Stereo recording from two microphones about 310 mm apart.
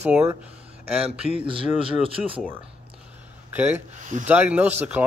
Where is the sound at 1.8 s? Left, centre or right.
Centre.